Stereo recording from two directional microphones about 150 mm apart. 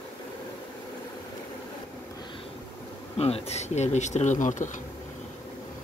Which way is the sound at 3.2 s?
45° left (ahead or behind).